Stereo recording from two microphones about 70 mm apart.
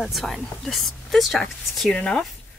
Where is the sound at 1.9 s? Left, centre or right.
Centre.